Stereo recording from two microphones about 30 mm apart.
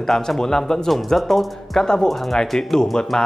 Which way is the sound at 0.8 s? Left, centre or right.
Centre.